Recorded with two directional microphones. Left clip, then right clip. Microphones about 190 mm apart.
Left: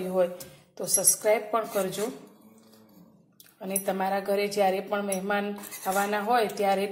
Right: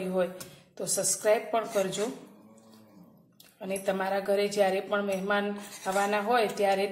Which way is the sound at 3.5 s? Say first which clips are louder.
Even; 10° left (ahead or behind).